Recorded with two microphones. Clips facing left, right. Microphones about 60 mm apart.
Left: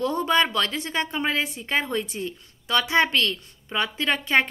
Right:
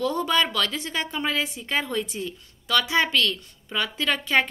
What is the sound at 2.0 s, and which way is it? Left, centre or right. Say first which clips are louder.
Speech: even; left.